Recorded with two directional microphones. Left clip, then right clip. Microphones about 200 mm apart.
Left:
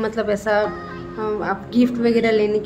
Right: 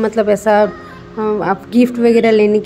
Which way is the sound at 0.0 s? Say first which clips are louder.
Right 8 dB; 30° right (ahead or behind).